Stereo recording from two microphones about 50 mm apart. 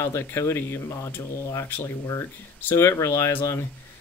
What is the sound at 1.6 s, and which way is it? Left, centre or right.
Speech, left.